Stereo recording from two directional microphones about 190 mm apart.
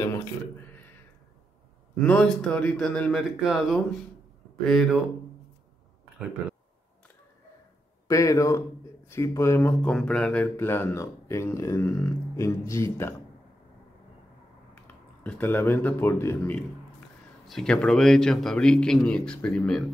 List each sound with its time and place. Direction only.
0.0 s a sound: 15° left (ahead or behind)
2.0 s a man's voice: 5° left (ahead or behind)
8.1 s speech: 15° left (ahead or behind)
15.2 s a man's voice: 10° left (ahead or behind)